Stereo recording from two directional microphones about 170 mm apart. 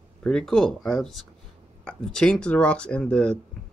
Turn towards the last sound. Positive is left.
turn(degrees=5)  # may be behind; listen again after turning